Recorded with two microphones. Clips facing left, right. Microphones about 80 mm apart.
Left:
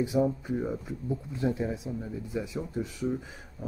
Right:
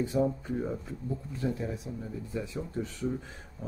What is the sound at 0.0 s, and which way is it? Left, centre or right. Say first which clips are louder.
Speech: left 2 dB; centre.